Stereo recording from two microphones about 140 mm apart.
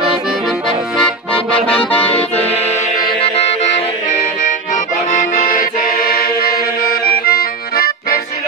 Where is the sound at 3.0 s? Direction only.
40° left (ahead or behind).